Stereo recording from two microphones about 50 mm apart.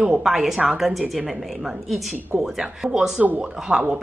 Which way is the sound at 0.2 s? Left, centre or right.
Centre.